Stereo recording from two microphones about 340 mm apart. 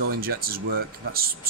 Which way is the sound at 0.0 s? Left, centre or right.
Right.